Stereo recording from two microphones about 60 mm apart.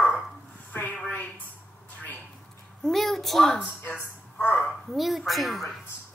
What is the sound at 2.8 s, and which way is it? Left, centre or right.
Speech, centre.